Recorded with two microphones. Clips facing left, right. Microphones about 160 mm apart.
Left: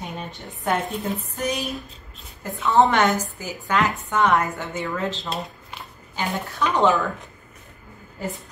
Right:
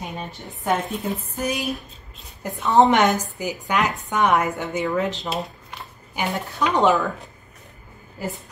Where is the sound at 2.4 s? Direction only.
20° right (ahead or behind).